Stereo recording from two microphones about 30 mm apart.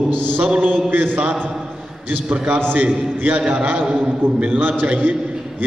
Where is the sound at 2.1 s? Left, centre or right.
Right.